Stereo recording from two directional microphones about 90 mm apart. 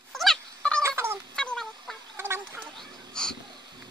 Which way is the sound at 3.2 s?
10° left (ahead or behind).